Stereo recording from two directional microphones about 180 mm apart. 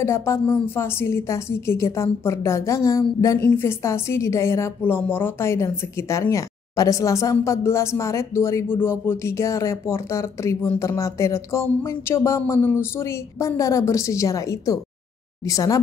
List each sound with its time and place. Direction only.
0.0 s a woman's voice: 15° left (ahead or behind)